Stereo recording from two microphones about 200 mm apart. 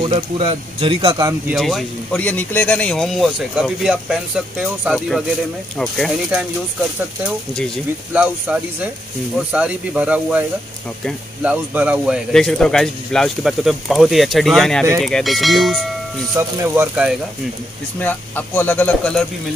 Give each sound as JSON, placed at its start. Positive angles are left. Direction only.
{"t": 0.0, "sound": "speech", "side_deg": -25}
{"t": 1.5, "sound": "speech", "side_deg": 0}
{"t": 8.1, "sound": "speech", "side_deg": -5}
{"t": 16.3, "sound": "speech", "side_deg": -10}
{"t": 18.0, "sound": "speech", "side_deg": 10}